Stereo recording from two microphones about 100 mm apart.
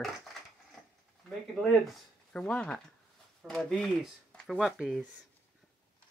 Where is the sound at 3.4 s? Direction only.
Centre (ahead or behind).